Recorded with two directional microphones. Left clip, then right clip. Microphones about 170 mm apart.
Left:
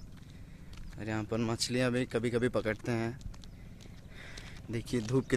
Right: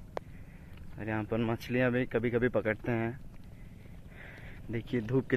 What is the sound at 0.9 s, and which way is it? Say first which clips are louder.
Speech: right 2 dB; 15° left (ahead or behind).